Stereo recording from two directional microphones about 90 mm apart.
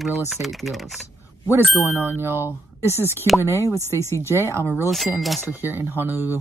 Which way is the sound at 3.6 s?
30° left (ahead or behind).